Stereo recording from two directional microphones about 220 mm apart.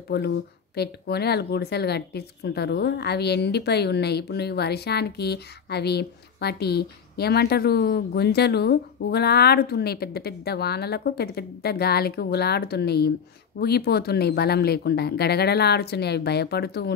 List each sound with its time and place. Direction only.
0.1 s speech: 45° left (ahead or behind)